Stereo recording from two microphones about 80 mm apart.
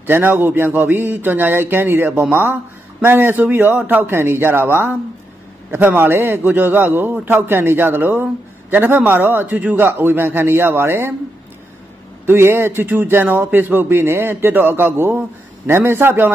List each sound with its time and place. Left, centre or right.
0.0 s a man's voice: right
12.3 s a man's voice: right